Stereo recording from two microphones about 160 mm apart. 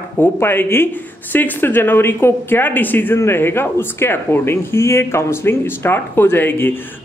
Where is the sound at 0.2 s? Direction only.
15° left (ahead or behind).